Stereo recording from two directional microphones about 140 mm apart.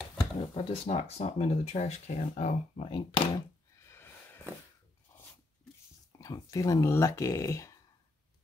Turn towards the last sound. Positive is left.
turn(degrees=20)  # may be behind; listen again after turning